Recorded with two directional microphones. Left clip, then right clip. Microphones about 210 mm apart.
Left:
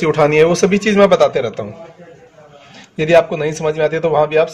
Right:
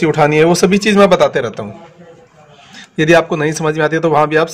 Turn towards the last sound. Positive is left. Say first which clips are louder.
# right 1 dB
turn(degrees=-30)  # may be behind; listen again after turning